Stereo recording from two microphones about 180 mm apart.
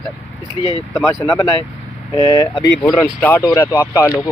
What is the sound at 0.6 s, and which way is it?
Speech, 30° left (ahead or behind).